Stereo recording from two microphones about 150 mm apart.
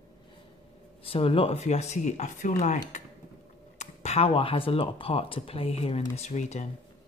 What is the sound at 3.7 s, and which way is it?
Speech, 50° left (ahead or behind).